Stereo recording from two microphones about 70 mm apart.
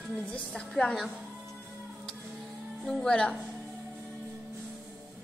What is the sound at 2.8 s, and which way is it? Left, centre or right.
Speech, centre.